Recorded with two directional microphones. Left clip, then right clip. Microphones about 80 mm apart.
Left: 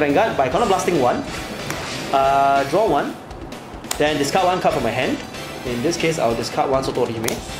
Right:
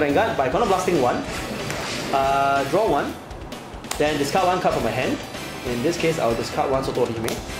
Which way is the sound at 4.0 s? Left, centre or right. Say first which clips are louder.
Left 3 dB; left.